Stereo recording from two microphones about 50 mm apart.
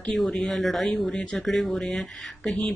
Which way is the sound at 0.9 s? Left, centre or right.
Left.